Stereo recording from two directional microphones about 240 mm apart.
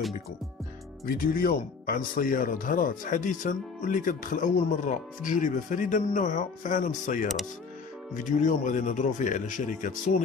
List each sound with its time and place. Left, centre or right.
1.0 s speech: left